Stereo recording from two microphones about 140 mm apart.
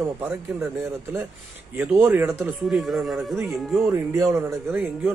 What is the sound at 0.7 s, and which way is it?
A man's voice, 20° right (ahead or behind).